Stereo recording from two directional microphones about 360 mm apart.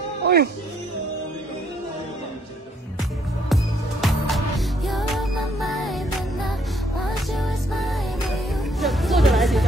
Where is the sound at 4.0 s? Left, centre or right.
Centre.